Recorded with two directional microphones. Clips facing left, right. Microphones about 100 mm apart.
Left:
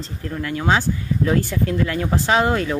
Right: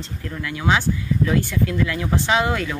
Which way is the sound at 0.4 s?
40° left (ahead or behind).